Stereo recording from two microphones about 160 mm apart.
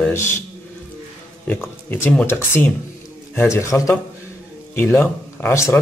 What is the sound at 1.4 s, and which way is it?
A man's voice, 15° left (ahead or behind).